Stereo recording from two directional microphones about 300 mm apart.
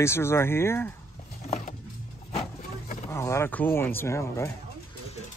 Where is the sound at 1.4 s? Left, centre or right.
Left.